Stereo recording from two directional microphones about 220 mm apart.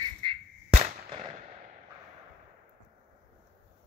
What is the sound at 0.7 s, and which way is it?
Firecracker, 20° right (ahead or behind).